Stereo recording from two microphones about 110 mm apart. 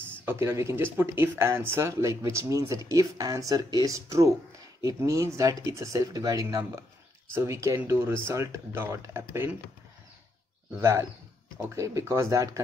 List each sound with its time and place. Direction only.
0.2 s speech: 25° right (ahead or behind)
10.8 s speech: 25° right (ahead or behind)